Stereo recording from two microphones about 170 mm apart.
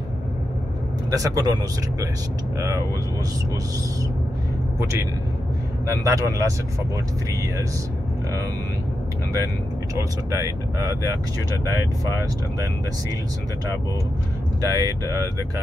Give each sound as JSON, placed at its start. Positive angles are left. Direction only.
{"t": 1.1, "sound": "speech", "side_deg": -20}
{"t": 5.9, "sound": "speech", "side_deg": -20}
{"t": 9.9, "sound": "speech", "side_deg": -15}
{"t": 14.6, "sound": "speech", "side_deg": -20}